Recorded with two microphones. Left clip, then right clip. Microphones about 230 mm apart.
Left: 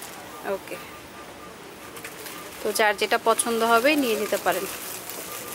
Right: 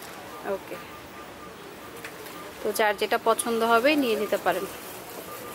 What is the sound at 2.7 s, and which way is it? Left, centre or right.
Speech, centre.